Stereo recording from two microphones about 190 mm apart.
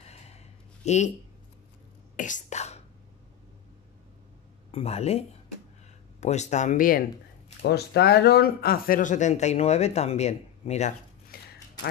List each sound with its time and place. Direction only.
0.0 s a sound: 35° left (ahead or behind)
0.8 s speech: 35° left (ahead or behind)
2.1 s whispering: 40° left (ahead or behind)
4.6 s speech: 30° left (ahead or behind)
6.2 s speech: 35° left (ahead or behind)
7.6 s speech: 60° left (ahead or behind); by 10.9 s 35° left (ahead or behind)
11.3 s a sound: 50° left (ahead or behind)